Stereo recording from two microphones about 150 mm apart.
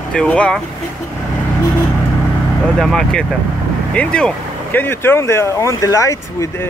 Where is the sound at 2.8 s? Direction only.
5° left (ahead or behind).